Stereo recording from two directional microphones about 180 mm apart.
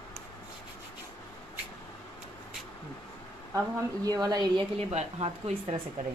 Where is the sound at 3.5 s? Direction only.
20° right (ahead or behind).